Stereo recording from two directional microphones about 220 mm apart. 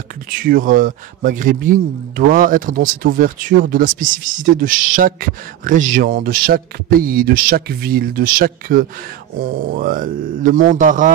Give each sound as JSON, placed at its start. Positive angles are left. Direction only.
{"t": 0.4, "sound": "a man's voice", "side_deg": -40}